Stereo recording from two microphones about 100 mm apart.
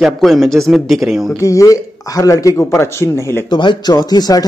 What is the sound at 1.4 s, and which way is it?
Speech, 30° left (ahead or behind).